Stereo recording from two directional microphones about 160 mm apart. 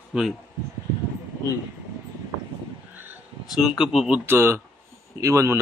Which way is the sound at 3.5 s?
5° right (ahead or behind).